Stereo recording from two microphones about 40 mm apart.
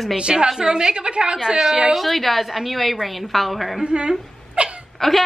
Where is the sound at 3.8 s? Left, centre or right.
Right.